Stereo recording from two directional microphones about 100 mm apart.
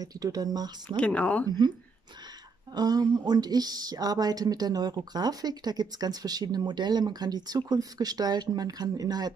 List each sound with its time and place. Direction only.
0.0 s a woman's voice: 40° right (ahead or behind)
0.9 s speech: 10° left (ahead or behind)
2.7 s a woman's voice: 40° right (ahead or behind)